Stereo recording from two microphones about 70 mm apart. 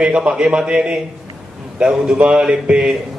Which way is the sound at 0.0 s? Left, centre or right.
Centre.